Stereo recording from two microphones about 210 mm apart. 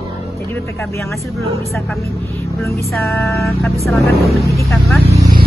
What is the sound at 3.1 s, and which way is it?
Speech, 15° left (ahead or behind).